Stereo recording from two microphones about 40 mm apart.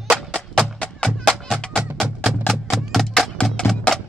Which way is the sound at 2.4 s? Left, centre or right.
Centre.